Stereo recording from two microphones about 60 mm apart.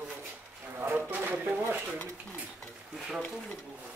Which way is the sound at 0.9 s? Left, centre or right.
Right.